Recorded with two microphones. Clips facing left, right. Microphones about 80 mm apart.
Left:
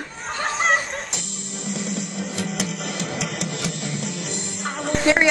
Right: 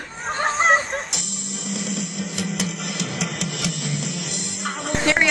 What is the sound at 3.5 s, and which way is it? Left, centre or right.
Music, left.